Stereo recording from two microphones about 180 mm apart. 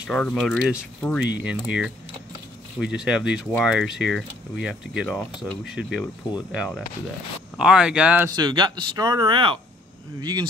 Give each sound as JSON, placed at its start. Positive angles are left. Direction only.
{"t": 0.0, "sound": "speech", "side_deg": 5}
{"t": 1.4, "sound": "speech", "side_deg": -5}
{"t": 8.4, "sound": "speech", "side_deg": -25}